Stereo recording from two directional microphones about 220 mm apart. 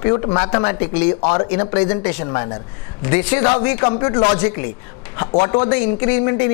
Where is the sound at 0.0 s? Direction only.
20° left (ahead or behind).